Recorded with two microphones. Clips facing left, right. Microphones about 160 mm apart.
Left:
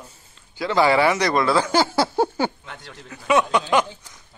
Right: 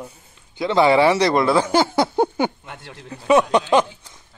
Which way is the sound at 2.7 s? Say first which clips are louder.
Right 3 dB; 30° right (ahead or behind).